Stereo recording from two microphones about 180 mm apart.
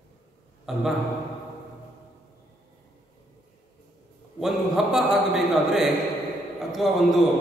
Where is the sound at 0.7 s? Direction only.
Centre (ahead or behind).